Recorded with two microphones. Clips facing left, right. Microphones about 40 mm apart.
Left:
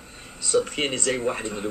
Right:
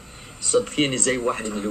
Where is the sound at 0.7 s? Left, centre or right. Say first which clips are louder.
Right 3 dB; right.